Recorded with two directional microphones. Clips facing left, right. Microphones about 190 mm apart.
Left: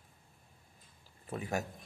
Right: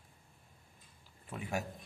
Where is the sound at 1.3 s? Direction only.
40° left (ahead or behind).